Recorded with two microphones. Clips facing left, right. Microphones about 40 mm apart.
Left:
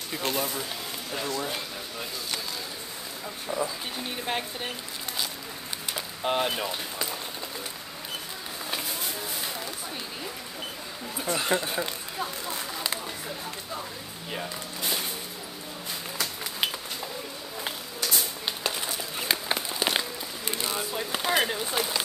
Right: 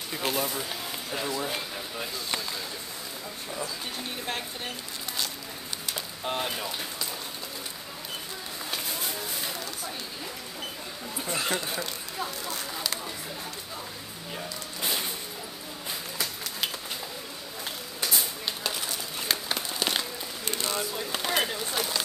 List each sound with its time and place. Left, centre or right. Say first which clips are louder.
0.1 s speech: even; centre
3.4 s speech: left 5 dB; centre
6.2 s speech: left 5 dB; centre
8.6 s vehicle: left 1 dB; centre
11.1 s speech: left 3 dB; centre
14.8 s music: even; centre
18.7 s a sound: left 1 dB; centre